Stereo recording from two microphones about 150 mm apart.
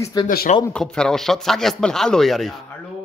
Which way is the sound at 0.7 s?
5° left (ahead or behind).